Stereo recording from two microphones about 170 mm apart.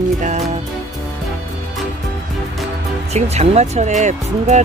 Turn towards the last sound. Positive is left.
turn(degrees=-45)  # may be behind; listen again after turning